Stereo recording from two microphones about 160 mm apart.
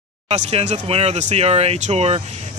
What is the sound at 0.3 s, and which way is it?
Speech, 40° right (ahead or behind).